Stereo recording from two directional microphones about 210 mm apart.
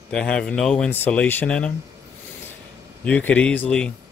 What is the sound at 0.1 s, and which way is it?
Speech, 5° left (ahead or behind).